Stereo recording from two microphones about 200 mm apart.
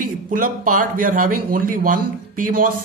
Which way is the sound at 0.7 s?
45° right (ahead or behind).